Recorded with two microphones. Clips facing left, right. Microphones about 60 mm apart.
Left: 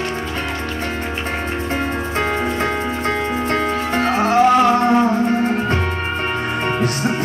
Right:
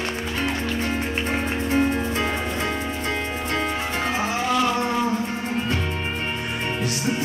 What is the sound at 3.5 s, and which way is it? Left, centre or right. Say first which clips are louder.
Music: left 4 dB; left.